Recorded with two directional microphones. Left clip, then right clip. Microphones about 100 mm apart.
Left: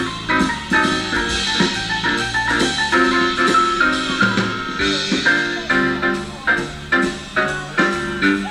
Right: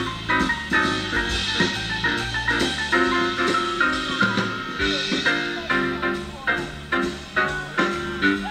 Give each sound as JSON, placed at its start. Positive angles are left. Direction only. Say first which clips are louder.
{"t": 0.3, "sound": "music", "louder": "left 3 dB", "side_deg": -15}